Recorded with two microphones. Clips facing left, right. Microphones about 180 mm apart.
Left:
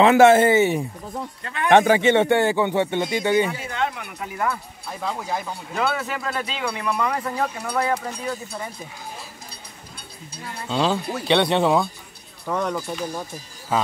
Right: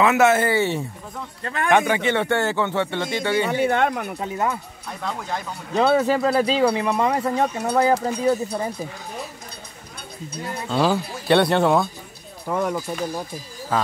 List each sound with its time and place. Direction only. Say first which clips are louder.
0.0 s speech: left 4 dB; 30° left (ahead or behind)
1.4 s speech: right 3 dB; 40° right (ahead or behind)
1.7 s speech: left 4 dB; 25° left (ahead or behind)
3.4 s speech: right 7 dB; 70° right (ahead or behind); by 4.2 s 45° right (ahead or behind)
4.2 s speech: even; 25° right (ahead or behind)
5.0 s speech: left 1 dB; 5° left (ahead or behind)
5.8 s speech: right 8 dB; 30° right (ahead or behind)
10.7 s speech: right 1 dB; 5° right (ahead or behind)